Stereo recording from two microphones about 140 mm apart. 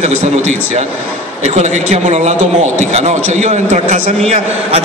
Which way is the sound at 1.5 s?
55° right (ahead or behind).